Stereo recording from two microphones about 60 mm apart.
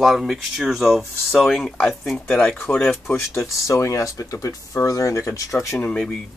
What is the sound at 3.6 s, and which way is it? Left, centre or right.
Speech, left.